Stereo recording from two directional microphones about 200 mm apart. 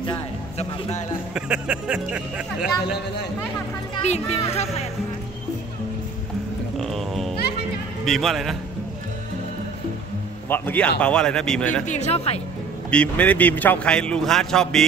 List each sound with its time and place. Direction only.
0.0 s a sound: 30° left (ahead or behind)
1.3 s a man's voice: 5° right (ahead or behind)
2.8 s a man's voice: 55° left (ahead or behind)
4.0 s speech: 35° left (ahead or behind)
6.8 s music: centre (ahead or behind)
8.0 s a man's voice: centre (ahead or behind)
10.5 s a man's voice: 10° left (ahead or behind)
11.8 s speech: 35° left (ahead or behind)
12.9 s a man's voice: 5° left (ahead or behind)